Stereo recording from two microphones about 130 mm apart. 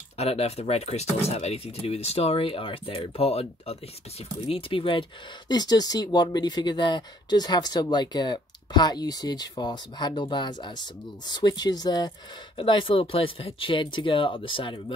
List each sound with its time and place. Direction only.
0.2 s speech: 50° left (ahead or behind)
5.5 s speech: 30° left (ahead or behind)
12.5 s speech: 40° left (ahead or behind)